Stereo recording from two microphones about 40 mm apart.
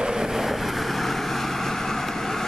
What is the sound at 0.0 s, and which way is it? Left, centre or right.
Vehicle, centre.